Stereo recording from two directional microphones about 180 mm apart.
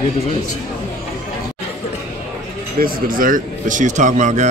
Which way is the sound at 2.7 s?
55° right (ahead or behind).